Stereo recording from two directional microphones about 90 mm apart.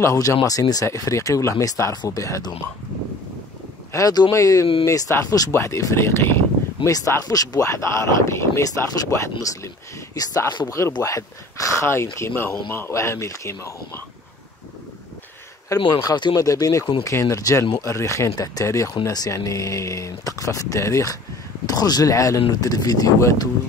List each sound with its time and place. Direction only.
0.0 s speech: 35° left (ahead or behind)
3.9 s speech: 45° left (ahead or behind)
11.0 s speech: 35° left (ahead or behind)
15.7 s speech: 40° left (ahead or behind)